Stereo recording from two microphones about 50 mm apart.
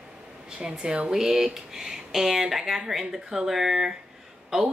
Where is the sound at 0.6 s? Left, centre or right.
Centre.